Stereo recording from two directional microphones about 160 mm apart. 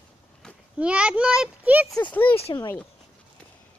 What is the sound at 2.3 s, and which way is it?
Speech, 35° left (ahead or behind).